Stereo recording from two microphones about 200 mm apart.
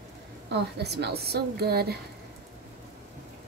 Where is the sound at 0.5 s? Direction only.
55° right (ahead or behind).